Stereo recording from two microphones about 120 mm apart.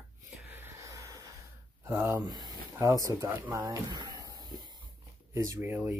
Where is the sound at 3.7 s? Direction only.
35° right (ahead or behind).